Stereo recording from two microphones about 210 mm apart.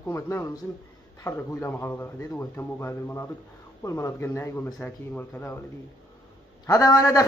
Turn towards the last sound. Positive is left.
turn(degrees=15)  # may be behind; listen again after turning